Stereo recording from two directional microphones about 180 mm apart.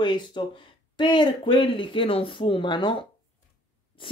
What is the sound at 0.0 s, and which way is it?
Speech, 25° left (ahead or behind).